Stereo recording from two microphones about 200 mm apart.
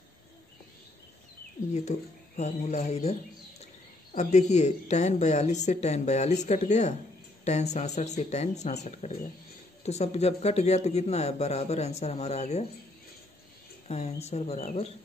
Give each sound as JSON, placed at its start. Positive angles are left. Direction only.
{"t": 1.7, "sound": "a man's voice", "side_deg": 35}
{"t": 13.8, "sound": "a woman's voice", "side_deg": 30}